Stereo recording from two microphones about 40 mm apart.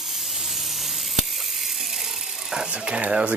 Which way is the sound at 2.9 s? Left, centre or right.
Right.